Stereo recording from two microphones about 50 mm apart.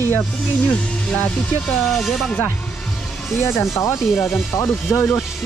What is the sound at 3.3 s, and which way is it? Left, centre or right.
Speech, left.